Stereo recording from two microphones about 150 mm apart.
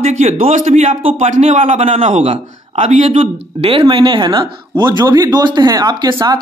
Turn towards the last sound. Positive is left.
turn(degrees=-25)  # may be behind; listen again after turning